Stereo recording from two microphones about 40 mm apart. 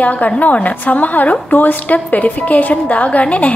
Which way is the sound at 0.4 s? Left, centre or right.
Left.